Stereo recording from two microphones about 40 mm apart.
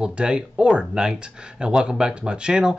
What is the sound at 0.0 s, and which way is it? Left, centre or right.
Speech, right.